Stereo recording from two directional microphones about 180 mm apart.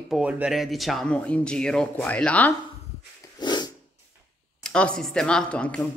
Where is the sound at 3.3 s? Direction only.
25° left (ahead or behind).